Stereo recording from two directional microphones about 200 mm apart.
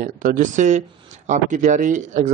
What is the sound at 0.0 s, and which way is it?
A man's voice, 40° right (ahead or behind).